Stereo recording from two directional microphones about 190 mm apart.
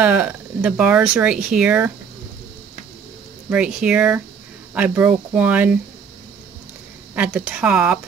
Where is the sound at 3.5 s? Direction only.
5° right (ahead or behind).